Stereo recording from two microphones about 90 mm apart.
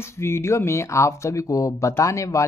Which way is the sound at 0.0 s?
30° left (ahead or behind).